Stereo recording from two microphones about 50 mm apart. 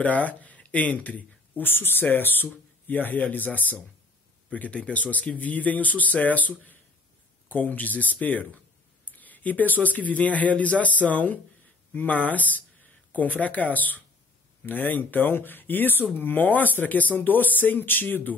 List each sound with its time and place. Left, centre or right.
0.0 s speech: left
1.6 s speech: left